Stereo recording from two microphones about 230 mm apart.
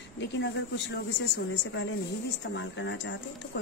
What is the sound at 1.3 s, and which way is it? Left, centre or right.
Speech, left.